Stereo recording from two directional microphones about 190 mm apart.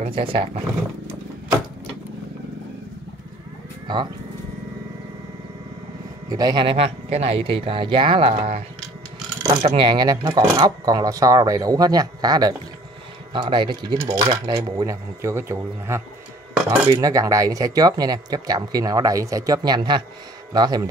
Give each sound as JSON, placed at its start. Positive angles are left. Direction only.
{"t": 0.0, "sound": "speech", "side_deg": -30}
{"t": 3.8, "sound": "speech", "side_deg": -25}
{"t": 6.2, "sound": "speech", "side_deg": -20}